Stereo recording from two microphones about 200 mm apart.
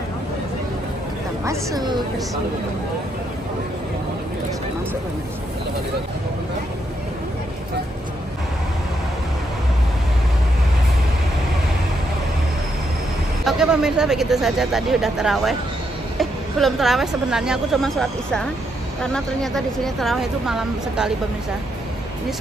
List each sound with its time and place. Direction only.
1.4 s a woman's voice: 15° right (ahead or behind)
13.5 s speech: 5° right (ahead or behind)